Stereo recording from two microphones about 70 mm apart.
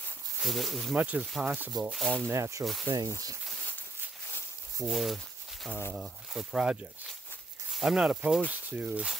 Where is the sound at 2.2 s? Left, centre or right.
Right.